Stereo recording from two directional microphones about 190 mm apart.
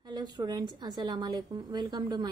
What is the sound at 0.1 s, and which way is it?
A woman's voice, 20° right (ahead or behind).